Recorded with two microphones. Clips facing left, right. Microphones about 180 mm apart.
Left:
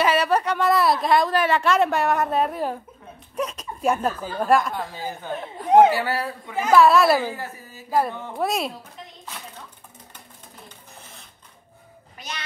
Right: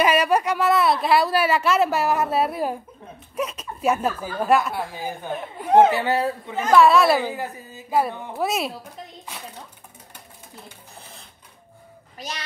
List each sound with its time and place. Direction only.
0.0 s a woman's voice: 10° right (ahead or behind)
6.5 s a woman's voice: 5° left (ahead or behind)
7.2 s speech: 15° right (ahead or behind)
8.1 s a woman's voice: 5° right (ahead or behind)
12.2 s a child's voice: 35° right (ahead or behind)